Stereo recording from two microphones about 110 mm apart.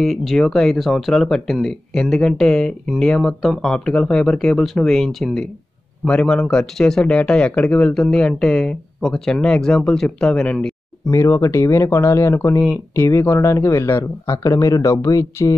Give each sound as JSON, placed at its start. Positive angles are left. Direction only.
{"t": 0.0, "sound": "speech", "side_deg": 0}
{"t": 11.1, "sound": "speech", "side_deg": 25}